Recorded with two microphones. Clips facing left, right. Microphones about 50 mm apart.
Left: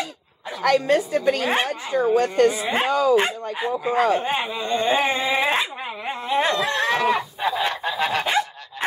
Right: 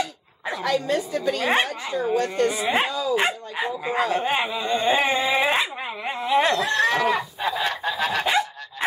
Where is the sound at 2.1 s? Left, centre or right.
Left.